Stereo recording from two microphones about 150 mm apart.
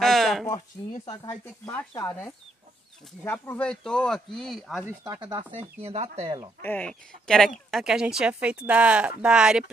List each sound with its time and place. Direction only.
0.0 s sheep: centre (ahead or behind)
1.2 s speech: 15° left (ahead or behind)
3.3 s speech: 10° left (ahead or behind)
4.8 s speech: 20° right (ahead or behind)
5.2 s speech: 35° right (ahead or behind)
6.6 s speech: 10° left (ahead or behind)